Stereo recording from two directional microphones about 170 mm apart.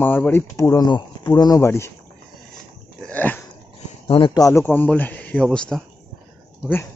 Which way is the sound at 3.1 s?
10° left (ahead or behind).